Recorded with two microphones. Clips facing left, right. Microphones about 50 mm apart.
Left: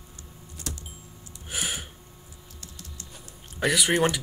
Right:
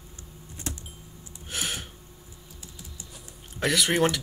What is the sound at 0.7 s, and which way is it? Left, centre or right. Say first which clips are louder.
Power windows: right 2 dB; right.